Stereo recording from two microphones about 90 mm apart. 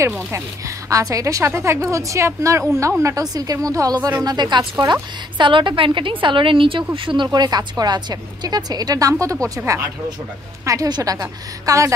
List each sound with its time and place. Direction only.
0.8 s a woman's voice: 35° right (ahead or behind); by 6.8 s 75° right (ahead or behind)
7.1 s a woman's voice: 55° right (ahead or behind); by 9.5 s 35° right (ahead or behind)
10.6 s a woman's voice: 40° right (ahead or behind)